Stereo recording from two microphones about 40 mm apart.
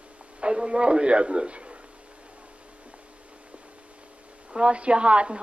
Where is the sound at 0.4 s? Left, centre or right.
Right.